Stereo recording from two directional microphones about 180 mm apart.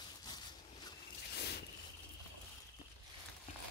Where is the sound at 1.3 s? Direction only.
65° left (ahead or behind).